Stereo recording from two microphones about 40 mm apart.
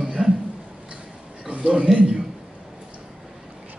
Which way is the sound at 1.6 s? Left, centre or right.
Right.